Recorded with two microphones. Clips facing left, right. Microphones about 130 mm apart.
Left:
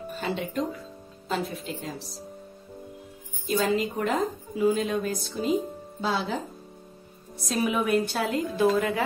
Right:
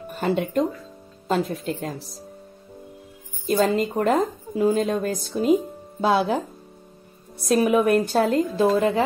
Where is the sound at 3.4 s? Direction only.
45° right (ahead or behind).